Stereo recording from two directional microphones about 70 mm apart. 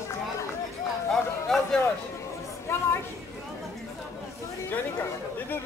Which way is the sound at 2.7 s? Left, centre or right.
Left.